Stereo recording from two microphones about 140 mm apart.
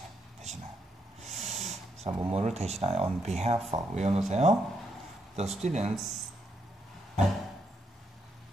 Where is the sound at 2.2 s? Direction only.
50° right (ahead or behind).